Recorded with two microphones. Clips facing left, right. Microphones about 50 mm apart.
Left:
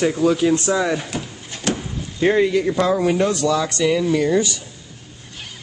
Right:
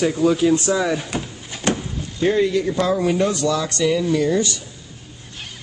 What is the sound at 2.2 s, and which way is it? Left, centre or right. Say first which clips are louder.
Speech: left 2 dB; left.